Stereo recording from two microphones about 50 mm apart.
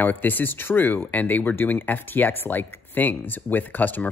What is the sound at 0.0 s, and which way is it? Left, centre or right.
Speech, left.